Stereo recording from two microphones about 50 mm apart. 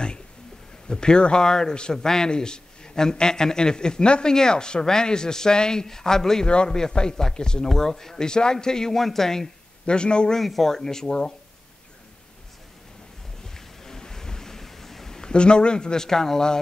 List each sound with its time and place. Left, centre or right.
0.8 s a man's voice: centre
9.8 s a man's voice: centre
10.4 s a man's voice: centre
13.8 s a sound: centre